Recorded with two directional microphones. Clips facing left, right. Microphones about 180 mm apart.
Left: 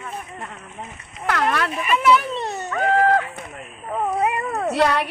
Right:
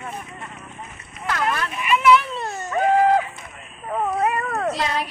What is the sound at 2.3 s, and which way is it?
Dog, 20° left (ahead or behind).